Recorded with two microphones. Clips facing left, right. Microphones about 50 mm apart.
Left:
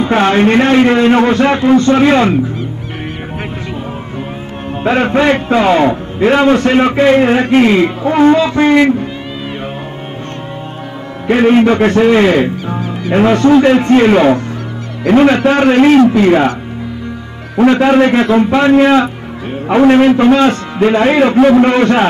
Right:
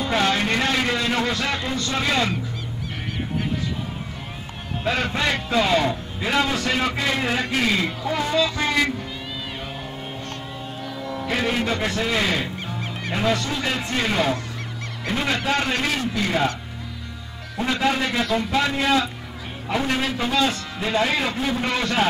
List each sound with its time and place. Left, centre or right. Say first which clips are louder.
0.0 s a man's voice: left 11 dB; left
4.8 s a man's voice: left 12 dB; left
11.2 s a man's voice: left 15 dB; left
17.6 s a man's voice: left 14 dB; left
21.4 s a man's voice: left 18 dB; left
21.6 s a man's voice: left 13 dB; left